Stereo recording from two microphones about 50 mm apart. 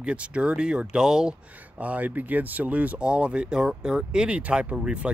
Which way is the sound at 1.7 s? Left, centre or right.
Right.